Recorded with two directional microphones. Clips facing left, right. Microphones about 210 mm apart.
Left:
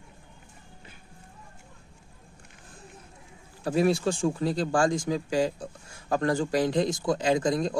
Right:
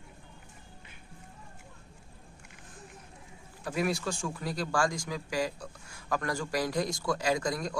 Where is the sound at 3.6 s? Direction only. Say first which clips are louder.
Left 7 dB; 30° left (ahead or behind).